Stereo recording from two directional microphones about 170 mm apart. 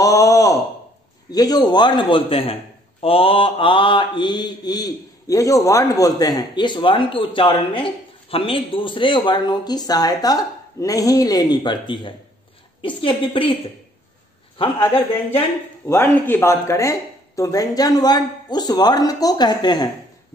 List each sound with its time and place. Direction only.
0.0 s sigh: 20° left (ahead or behind)
1.3 s a man's voice: 20° left (ahead or behind)
15.8 s a man's voice: 15° left (ahead or behind)